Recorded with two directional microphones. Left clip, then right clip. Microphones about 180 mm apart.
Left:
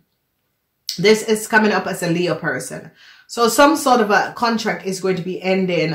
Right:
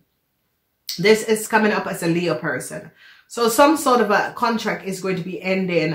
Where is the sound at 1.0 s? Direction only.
30° left (ahead or behind).